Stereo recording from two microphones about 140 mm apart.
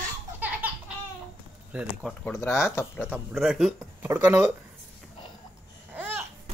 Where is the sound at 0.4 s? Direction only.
10° right (ahead or behind).